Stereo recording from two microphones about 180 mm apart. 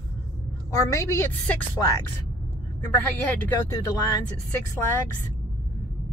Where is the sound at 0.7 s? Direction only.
15° left (ahead or behind).